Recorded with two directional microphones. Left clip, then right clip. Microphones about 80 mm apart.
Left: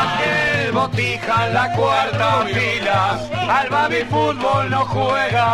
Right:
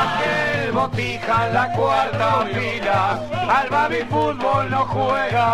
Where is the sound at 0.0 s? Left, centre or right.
Centre.